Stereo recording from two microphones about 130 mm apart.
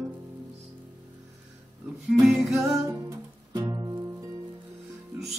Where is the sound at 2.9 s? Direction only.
25° right (ahead or behind).